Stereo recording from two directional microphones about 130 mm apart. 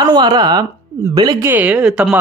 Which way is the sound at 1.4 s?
15° right (ahead or behind).